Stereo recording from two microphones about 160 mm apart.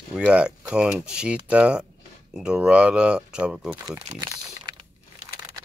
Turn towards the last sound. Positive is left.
turn(degrees=-20)  # may be behind; listen again after turning